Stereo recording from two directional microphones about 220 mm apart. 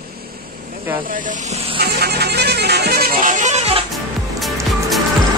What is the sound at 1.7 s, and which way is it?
Music, 45° right (ahead or behind).